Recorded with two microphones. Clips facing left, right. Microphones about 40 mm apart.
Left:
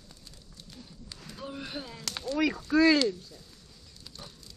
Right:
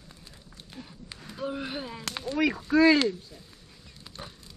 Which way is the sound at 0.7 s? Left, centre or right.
Right.